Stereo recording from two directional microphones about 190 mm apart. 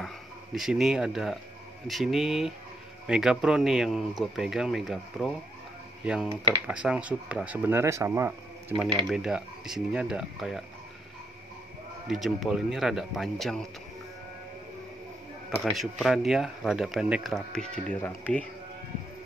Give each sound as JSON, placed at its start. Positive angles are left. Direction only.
{"t": 0.6, "sound": "speech", "side_deg": 0}
{"t": 6.2, "sound": "speech", "side_deg": -30}
{"t": 6.7, "sound": "speech", "side_deg": -5}
{"t": 12.1, "sound": "speech", "side_deg": 0}
{"t": 15.6, "sound": "speech", "side_deg": 0}